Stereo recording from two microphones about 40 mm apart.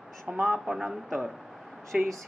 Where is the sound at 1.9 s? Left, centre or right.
Right.